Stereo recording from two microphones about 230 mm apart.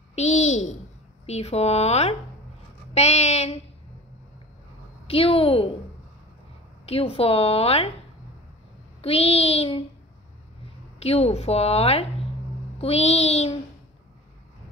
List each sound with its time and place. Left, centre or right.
0.1 s a sound: left
1.2 s a woman's voice: left
5.0 s a woman's voice: left
6.9 s a woman's voice: left
9.0 s a woman's voice: left
11.0 s a woman's voice: left